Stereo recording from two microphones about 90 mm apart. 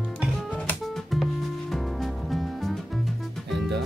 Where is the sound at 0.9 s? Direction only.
Centre (ahead or behind).